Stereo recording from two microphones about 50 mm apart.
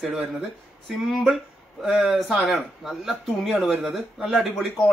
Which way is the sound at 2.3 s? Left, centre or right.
Centre.